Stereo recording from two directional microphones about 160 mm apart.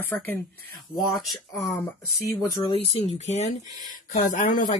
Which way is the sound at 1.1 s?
Centre (ahead or behind).